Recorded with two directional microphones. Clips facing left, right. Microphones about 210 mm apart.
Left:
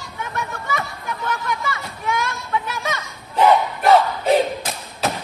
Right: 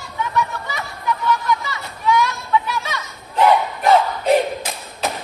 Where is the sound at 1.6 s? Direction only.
50° left (ahead or behind).